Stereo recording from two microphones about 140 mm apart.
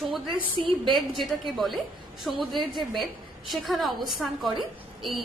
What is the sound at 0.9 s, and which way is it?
A woman's voice, centre (ahead or behind).